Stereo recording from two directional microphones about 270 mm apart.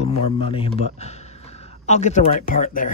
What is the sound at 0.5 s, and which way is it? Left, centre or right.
Speech, centre.